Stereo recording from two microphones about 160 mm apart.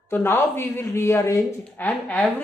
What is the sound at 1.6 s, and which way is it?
Speech, 10° left (ahead or behind).